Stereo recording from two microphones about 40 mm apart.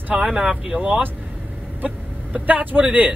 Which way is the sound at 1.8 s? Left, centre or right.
Right.